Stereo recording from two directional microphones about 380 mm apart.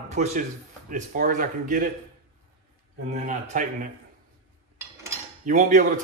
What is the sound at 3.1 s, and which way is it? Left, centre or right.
Speech, centre.